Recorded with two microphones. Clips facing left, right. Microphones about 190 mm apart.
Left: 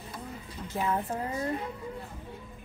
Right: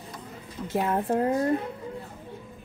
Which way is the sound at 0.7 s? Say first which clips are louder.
Right 6 dB; 55° right (ahead or behind).